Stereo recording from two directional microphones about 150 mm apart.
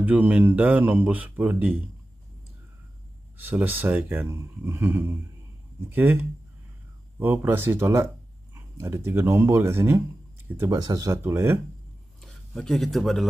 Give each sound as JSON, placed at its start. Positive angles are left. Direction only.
{"t": 0.0, "sound": "speech", "side_deg": -10}
{"t": 3.3, "sound": "speech", "side_deg": -10}
{"t": 12.2, "sound": "speech", "side_deg": 5}